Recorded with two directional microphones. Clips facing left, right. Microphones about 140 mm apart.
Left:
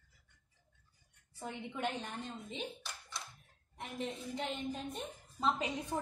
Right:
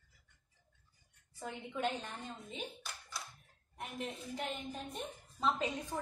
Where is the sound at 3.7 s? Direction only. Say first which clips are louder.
Left 2 dB; centre (ahead or behind).